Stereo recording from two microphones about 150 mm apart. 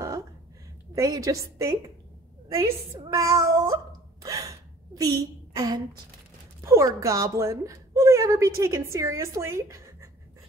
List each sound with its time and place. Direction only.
0.9 s a woman's voice: 25° right (ahead or behind)
3.1 s cat: 20° right (ahead or behind)
6.6 s a woman's voice: 20° right (ahead or behind)